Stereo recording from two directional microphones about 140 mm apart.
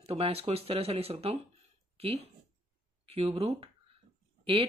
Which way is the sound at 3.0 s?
45° right (ahead or behind).